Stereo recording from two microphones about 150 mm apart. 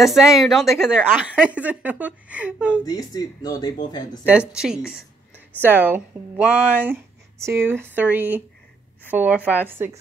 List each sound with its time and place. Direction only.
0.0 s a woman's voice: centre (ahead or behind)
2.8 s speech: 25° left (ahead or behind)
4.6 s a woman's voice: 5° right (ahead or behind)